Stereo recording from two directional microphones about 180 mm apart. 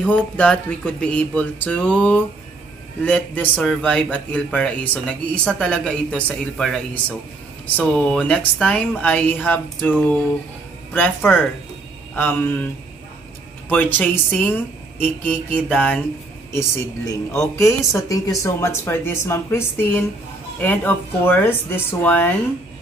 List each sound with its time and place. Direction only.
0.0 s speech: 5° left (ahead or behind)
13.7 s speech: 10° left (ahead or behind)